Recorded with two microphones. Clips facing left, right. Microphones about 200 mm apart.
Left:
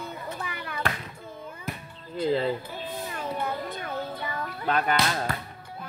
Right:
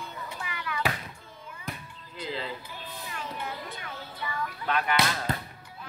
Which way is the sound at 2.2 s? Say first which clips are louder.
Left 10 dB; 45° left (ahead or behind).